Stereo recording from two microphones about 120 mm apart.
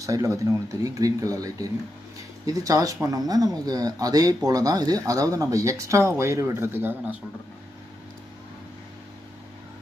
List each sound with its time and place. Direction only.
0.0 s speech: 25° right (ahead or behind)